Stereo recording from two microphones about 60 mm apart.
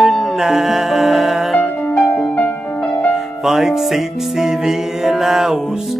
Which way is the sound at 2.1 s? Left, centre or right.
Left.